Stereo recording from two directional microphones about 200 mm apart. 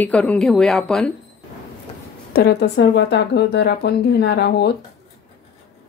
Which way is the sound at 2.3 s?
55° left (ahead or behind).